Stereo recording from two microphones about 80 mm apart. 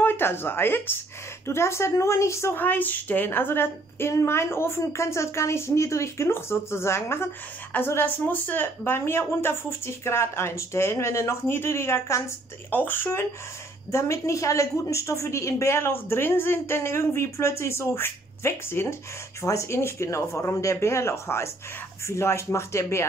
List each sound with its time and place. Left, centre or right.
0.0 s a woman's voice: left
2.5 s a woman's voice: left
13.9 s a woman's voice: left